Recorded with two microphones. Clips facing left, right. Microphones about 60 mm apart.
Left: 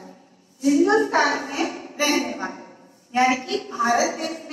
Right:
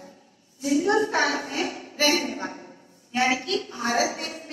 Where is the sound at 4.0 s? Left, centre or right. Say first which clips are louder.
Left 3 dB; left.